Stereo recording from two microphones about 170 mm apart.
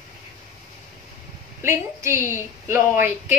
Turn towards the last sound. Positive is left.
turn(degrees=-15)  # may be behind; listen again after turning